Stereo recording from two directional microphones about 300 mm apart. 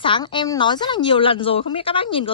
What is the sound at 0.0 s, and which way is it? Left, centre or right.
A woman's voice, centre.